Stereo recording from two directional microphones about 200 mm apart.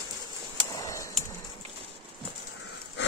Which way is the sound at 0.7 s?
15° left (ahead or behind).